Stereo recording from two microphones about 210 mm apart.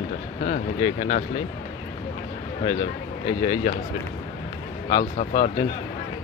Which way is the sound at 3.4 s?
30° left (ahead or behind).